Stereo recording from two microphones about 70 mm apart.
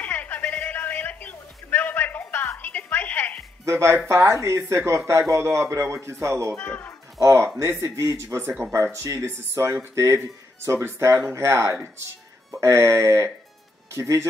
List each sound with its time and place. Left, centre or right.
0.0 s a sound: left
3.6 s speech: right
6.5 s speech: centre
7.2 s speech: right